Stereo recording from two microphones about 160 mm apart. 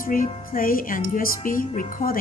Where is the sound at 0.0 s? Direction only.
60° left (ahead or behind).